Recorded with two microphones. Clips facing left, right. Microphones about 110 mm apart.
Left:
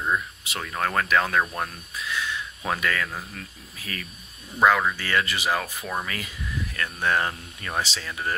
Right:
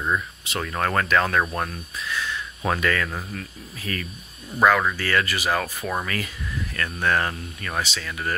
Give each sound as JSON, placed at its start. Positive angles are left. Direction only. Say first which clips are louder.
{"t": 0.0, "sound": "speech", "louder": "right 1 dB", "side_deg": 5}
{"t": 5.6, "sound": "speech", "louder": "right 3 dB", "side_deg": 0}
{"t": 7.8, "sound": "speech", "louder": "right 1 dB", "side_deg": 30}